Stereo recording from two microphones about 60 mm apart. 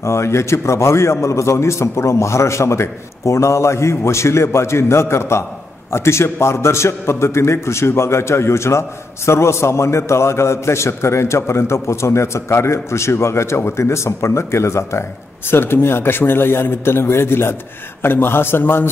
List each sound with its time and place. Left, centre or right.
0.0 s a man's voice: left